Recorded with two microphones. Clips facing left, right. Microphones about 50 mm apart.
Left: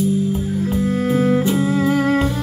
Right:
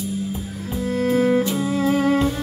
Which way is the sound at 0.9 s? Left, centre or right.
Centre.